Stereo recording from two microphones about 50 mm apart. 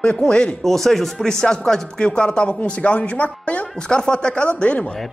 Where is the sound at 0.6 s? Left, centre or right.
Centre; by 3.6 s left.